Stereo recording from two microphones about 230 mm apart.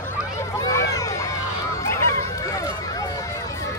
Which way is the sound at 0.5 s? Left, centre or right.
Centre.